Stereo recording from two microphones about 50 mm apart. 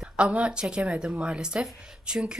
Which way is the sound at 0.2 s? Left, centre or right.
Right.